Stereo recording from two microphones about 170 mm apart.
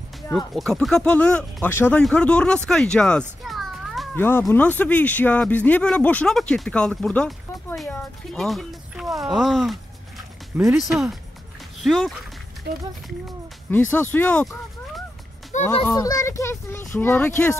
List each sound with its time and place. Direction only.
0.6 s speech: centre (ahead or behind)
4.2 s speech: 15° left (ahead or behind)
13.7 s speech: 10° left (ahead or behind)
15.5 s a child's voice: 45° left (ahead or behind)
16.0 s speech: 20° left (ahead or behind)